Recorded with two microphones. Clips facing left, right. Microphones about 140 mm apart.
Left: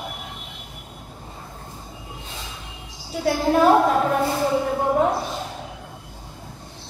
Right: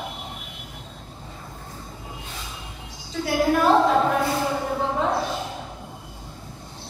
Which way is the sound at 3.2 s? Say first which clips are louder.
Left 1 dB; 30° left (ahead or behind).